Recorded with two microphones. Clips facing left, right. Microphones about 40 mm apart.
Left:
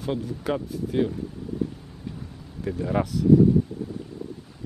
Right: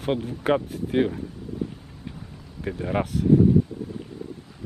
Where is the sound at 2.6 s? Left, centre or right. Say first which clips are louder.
Left 1 dB; right.